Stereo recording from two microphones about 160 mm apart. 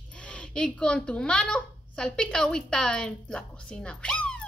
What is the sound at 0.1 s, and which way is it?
A child's voice, 5° left (ahead or behind).